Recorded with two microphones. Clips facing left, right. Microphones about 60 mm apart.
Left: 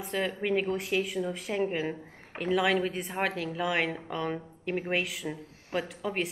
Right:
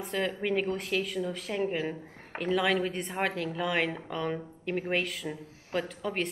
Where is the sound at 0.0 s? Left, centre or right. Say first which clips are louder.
Even; centre.